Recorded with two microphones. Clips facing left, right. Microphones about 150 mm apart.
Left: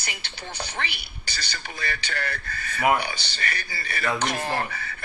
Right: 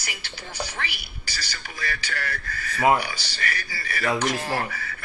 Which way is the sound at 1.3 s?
60° left (ahead or behind).